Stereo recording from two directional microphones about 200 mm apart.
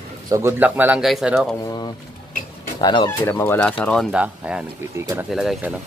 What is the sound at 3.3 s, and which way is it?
Speech, 10° left (ahead or behind).